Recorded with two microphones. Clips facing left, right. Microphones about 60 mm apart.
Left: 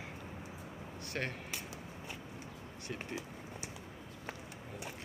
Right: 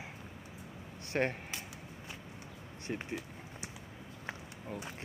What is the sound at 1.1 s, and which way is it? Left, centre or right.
Speech, right.